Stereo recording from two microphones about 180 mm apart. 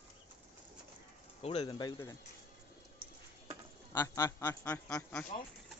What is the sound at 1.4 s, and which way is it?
Speech, 25° left (ahead or behind).